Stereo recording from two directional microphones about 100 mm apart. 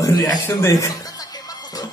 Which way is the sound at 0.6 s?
35° left (ahead or behind).